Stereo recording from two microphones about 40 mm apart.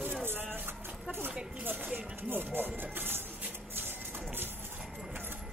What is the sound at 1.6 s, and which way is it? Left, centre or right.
Speech, right.